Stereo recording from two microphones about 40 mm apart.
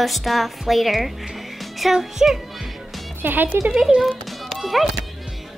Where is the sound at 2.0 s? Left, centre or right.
Centre.